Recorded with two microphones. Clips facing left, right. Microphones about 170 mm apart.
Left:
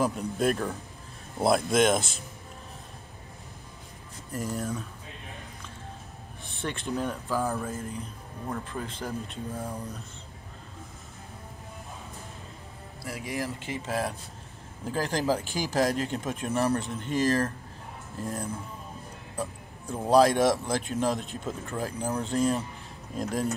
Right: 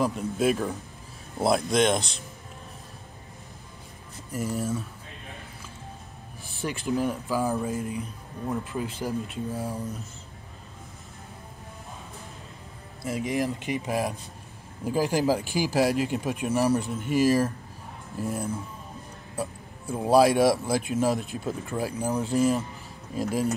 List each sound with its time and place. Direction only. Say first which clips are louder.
0.0 s speech: right 2 dB; centre (ahead or behind)
4.3 s speech: right 3 dB; 5° right (ahead or behind)
6.4 s speech: right 3 dB; 5° right (ahead or behind)
13.0 s a man's voice: right 6 dB; 20° right (ahead or behind)